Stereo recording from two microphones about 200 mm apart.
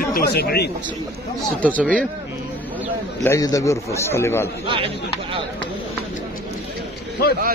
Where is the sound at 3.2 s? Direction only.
15° left (ahead or behind).